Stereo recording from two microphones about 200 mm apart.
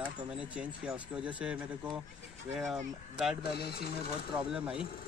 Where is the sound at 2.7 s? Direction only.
Centre (ahead or behind).